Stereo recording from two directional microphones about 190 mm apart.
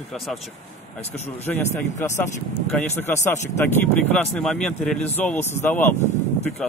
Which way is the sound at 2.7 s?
10° left (ahead or behind).